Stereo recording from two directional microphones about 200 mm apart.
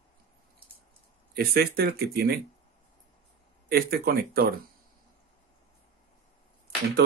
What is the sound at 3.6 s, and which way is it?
Speech, 50° right (ahead or behind).